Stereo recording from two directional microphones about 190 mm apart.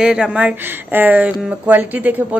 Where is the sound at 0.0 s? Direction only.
5° right (ahead or behind).